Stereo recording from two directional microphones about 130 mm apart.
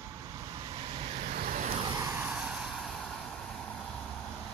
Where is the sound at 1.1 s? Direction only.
70° right (ahead or behind).